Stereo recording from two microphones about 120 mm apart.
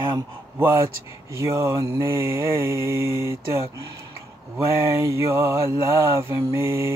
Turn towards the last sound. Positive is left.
turn(degrees=-20)  # may be behind; listen again after turning